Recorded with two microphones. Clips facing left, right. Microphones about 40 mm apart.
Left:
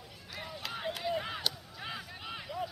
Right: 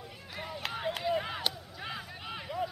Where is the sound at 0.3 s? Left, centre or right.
Centre.